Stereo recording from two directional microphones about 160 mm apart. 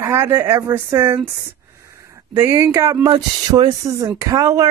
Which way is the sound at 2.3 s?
20° right (ahead or behind).